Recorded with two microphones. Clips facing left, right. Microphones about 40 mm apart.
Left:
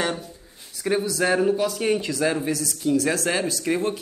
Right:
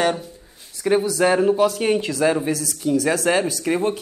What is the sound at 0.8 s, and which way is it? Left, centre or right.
Speech, centre.